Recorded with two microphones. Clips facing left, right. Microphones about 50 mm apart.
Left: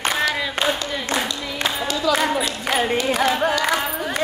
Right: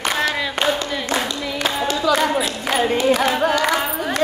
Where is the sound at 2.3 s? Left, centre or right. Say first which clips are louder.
Right 1 dB; centre.